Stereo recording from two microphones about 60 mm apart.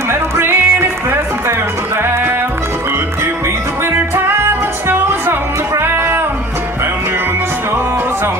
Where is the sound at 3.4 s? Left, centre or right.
Right.